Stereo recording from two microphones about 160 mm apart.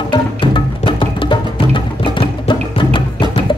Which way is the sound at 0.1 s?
30° left (ahead or behind).